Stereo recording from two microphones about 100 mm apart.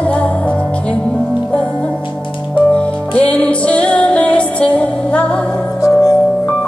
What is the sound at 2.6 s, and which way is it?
Music, 10° left (ahead or behind).